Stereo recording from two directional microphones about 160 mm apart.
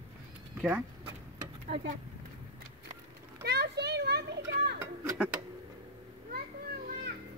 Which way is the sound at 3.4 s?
90° right.